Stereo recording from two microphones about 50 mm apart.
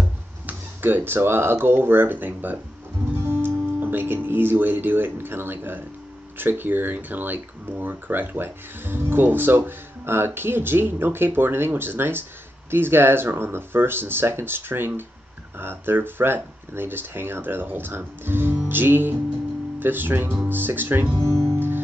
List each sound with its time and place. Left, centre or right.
0.5 s speech: right
3.2 s music: right
3.8 s speech: right
21.2 s speech: right
21.5 s music: right